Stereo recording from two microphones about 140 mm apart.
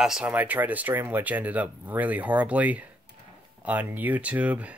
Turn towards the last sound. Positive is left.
turn(degrees=-10)  # may be behind; listen again after turning